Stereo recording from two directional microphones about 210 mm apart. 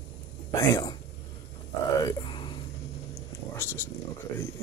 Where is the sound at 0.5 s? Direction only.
15° left (ahead or behind).